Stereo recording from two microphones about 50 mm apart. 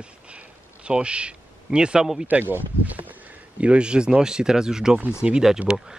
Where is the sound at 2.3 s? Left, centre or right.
Right.